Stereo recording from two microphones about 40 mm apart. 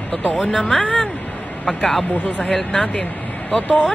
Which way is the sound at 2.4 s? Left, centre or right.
Centre.